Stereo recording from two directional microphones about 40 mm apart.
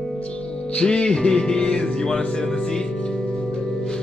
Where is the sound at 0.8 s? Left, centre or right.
Left.